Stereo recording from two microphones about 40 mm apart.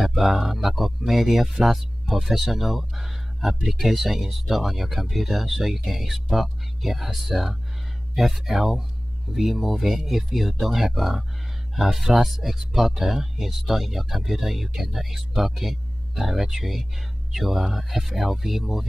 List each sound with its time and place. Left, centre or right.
0.1 s speech: centre